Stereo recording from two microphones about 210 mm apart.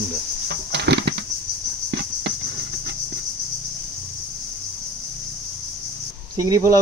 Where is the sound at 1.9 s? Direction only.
55° right (ahead or behind).